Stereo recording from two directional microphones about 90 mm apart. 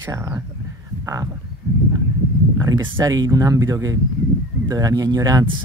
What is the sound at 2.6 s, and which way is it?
Speech, 40° right (ahead or behind).